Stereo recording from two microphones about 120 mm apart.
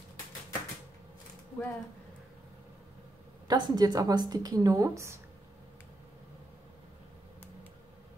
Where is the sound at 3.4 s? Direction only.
35° right (ahead or behind).